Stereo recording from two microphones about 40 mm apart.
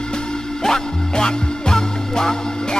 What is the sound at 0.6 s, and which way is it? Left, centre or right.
Music, centre.